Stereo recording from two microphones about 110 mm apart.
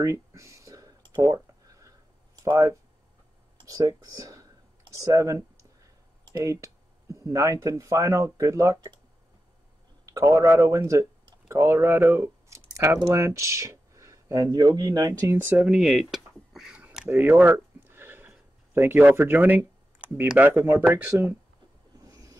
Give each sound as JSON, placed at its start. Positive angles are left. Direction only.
{"t": 0.0, "sound": "a sound", "side_deg": -30}
{"t": 2.4, "sound": "speech", "side_deg": -25}
{"t": 10.0, "sound": "speech", "side_deg": -30}
{"t": 15.3, "sound": "speech", "side_deg": -15}
{"t": 17.1, "sound": "speech", "side_deg": -20}
{"t": 22.0, "sound": "rub", "side_deg": -30}